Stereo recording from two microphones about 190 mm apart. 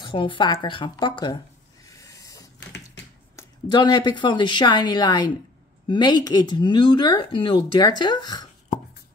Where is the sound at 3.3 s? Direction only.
20° left (ahead or behind).